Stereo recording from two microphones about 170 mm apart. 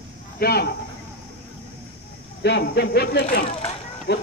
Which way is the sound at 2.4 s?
80° left.